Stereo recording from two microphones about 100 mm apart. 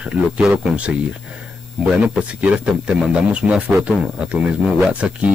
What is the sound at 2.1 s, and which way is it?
Speech, 10° right (ahead or behind).